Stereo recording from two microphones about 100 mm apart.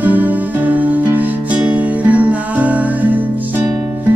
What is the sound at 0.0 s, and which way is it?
Music, 15° right (ahead or behind).